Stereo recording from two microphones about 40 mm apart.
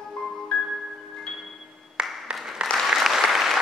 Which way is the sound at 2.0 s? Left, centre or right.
Right.